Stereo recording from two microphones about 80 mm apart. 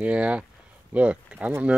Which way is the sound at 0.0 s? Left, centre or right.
Centre.